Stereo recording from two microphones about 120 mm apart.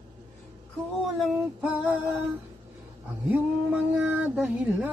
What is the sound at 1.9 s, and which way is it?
Music, 15° right (ahead or behind).